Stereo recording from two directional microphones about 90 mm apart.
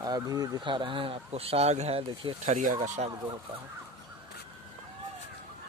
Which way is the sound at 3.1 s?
50° right (ahead or behind).